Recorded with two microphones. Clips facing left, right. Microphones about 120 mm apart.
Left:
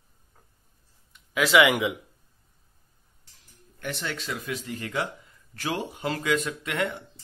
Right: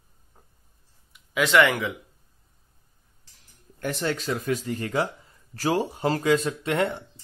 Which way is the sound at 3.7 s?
40° right (ahead or behind).